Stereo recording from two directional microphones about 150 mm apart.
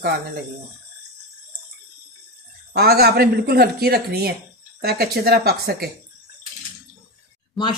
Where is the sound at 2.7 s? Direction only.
90° right.